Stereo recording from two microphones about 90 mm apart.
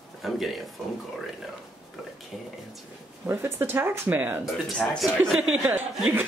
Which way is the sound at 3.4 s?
25° right (ahead or behind).